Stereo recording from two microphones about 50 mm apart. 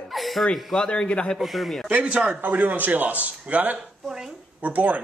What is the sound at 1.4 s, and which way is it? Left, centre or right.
Speech, centre.